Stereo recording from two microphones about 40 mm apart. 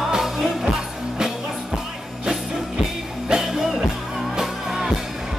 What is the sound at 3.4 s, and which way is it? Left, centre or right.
Music, centre.